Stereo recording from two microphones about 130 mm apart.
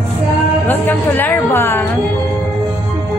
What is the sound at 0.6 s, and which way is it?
A woman's voice, 15° left (ahead or behind).